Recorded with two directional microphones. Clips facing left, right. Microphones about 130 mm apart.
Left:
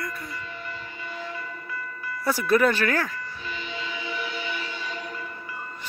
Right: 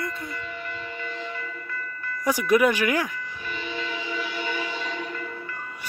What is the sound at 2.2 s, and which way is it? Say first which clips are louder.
Speech: right 1 dB; 15° right (ahead or behind).